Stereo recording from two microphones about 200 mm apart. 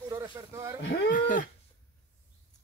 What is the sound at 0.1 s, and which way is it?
Speech, 15° right (ahead or behind).